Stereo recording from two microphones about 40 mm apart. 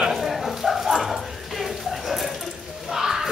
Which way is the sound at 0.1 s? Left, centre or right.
Centre.